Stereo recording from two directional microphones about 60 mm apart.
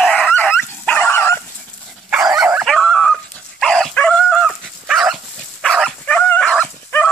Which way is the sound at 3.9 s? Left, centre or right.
Centre.